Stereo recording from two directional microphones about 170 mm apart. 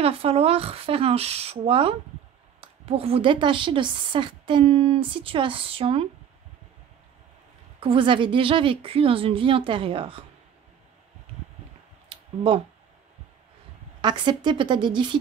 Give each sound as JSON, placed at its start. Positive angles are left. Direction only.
{"t": 0.0, "sound": "a woman's voice", "side_deg": -35}
{"t": 7.8, "sound": "a woman's voice", "side_deg": -30}
{"t": 12.1, "sound": "a sound", "side_deg": -30}
{"t": 14.0, "sound": "a woman's voice", "side_deg": -25}